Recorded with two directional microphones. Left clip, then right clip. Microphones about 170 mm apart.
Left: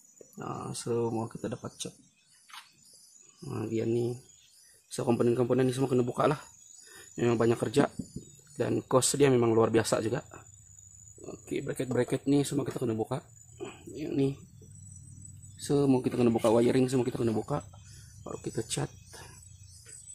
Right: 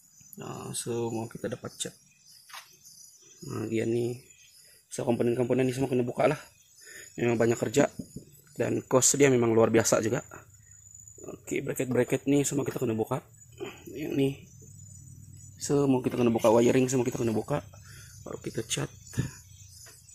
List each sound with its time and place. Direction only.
0.4 s a man's voice: 5° left (ahead or behind)
3.4 s speech: centre (ahead or behind)
4.9 s a man's voice: 20° left (ahead or behind); by 10.4 s 5° right (ahead or behind)
11.1 s speech: 5° left (ahead or behind)
15.8 s a man's voice: 10° left (ahead or behind)